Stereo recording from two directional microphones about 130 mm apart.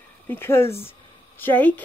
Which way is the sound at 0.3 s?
20° left (ahead or behind).